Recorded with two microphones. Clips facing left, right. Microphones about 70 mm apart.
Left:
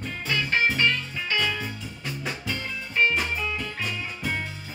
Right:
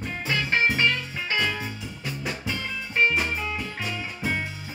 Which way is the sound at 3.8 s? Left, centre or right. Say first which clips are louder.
Even; centre.